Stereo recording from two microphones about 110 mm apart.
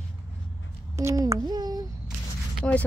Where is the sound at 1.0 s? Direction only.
25° right (ahead or behind).